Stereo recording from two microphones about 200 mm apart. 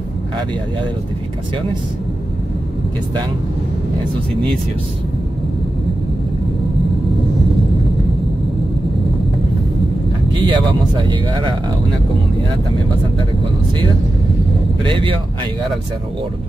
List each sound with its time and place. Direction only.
10.4 s speech: 25° right (ahead or behind)
14.9 s speech: 25° right (ahead or behind)